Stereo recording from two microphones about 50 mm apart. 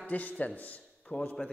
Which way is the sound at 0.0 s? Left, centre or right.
Left.